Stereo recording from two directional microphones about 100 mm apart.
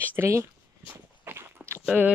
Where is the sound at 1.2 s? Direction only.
25° right (ahead or behind).